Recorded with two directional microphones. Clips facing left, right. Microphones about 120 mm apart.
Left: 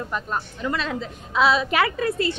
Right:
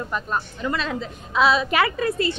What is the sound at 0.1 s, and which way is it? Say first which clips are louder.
A woman's voice: right 1 dB; 20° right (ahead or behind).